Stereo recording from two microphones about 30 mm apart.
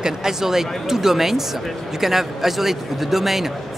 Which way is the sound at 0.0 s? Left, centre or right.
Centre.